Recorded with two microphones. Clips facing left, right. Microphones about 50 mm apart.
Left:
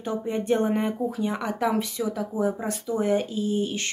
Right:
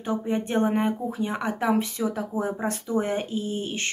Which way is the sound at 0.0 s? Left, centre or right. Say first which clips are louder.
Right 1 dB; right.